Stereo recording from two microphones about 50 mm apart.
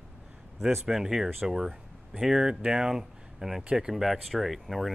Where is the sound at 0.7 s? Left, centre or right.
Centre.